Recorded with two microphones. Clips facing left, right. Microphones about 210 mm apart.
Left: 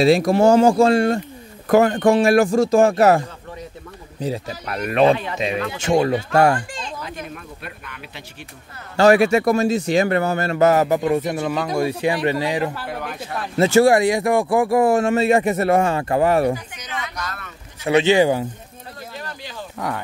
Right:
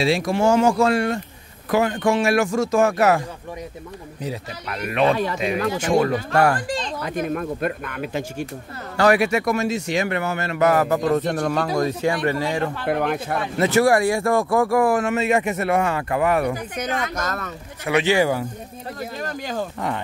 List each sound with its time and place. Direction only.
0.0 s a man's voice: 40° left (ahead or behind)
1.7 s a man's voice: 45° left (ahead or behind)
4.2 s a man's voice: 35° left (ahead or behind)
5.4 s speech: 25° left (ahead or behind)
7.0 s speech: 55° right (ahead or behind)
8.9 s a man's voice: 25° left (ahead or behind)
11.0 s a man's voice: 10° left (ahead or behind)
12.8 s speech: 55° right (ahead or behind)
13.6 s a man's voice: 25° left (ahead or behind)
16.7 s speech: 55° right (ahead or behind)
17.8 s speech: 25° left (ahead or behind)
19.2 s speech: 45° right (ahead or behind)